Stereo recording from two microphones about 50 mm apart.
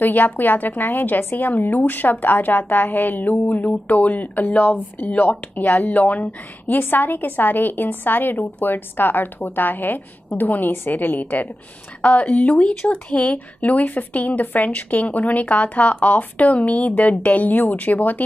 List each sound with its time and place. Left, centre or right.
0.0 s a woman's voice: left